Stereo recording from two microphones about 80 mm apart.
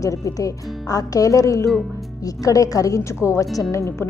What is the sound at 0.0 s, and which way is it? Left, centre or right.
A woman's voice, left.